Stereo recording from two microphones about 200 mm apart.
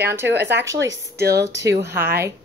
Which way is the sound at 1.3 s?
15° right (ahead or behind).